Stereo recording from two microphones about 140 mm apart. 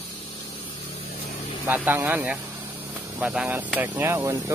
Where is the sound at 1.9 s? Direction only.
15° right (ahead or behind).